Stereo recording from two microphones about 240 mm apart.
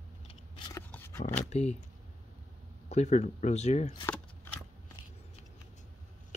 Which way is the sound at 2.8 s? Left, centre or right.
Left.